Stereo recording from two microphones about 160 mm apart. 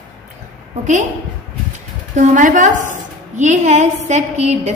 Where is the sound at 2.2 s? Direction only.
50° right (ahead or behind).